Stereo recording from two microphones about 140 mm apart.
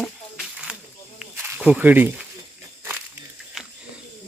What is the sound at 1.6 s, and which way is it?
Speech, 10° right (ahead or behind).